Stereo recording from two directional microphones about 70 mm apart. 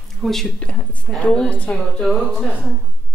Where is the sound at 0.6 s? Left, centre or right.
Centre.